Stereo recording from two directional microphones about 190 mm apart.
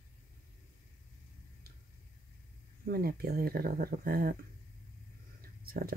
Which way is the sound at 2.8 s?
50° right (ahead or behind).